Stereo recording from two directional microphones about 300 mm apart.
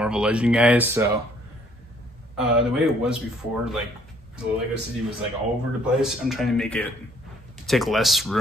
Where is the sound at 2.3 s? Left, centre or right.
Centre.